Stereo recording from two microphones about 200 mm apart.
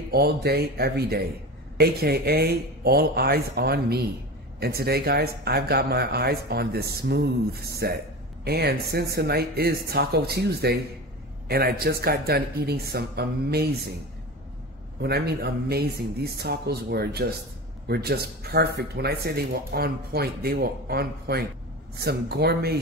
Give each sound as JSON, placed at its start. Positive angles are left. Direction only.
{"t": 0.1, "sound": "speech", "side_deg": -55}
{"t": 15.0, "sound": "speech", "side_deg": -55}